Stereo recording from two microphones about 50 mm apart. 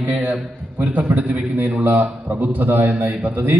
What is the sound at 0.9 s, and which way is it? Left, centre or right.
A man's voice, right.